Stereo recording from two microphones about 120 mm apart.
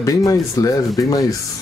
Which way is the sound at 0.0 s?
30° left (ahead or behind).